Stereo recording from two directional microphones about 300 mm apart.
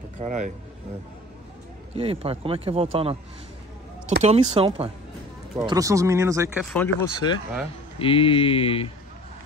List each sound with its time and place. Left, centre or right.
0.2 s speech: right
2.0 s speech: centre
4.2 s speech: right
6.6 s speech: centre
8.0 s speech: centre